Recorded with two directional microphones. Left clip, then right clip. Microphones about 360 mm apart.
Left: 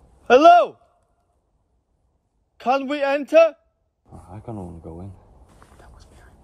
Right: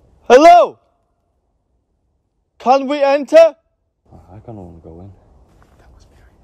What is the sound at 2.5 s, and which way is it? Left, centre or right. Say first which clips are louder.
A man's voice: right 8 dB; centre.